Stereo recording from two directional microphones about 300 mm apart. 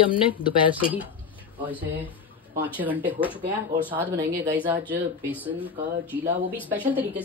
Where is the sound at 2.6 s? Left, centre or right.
Centre.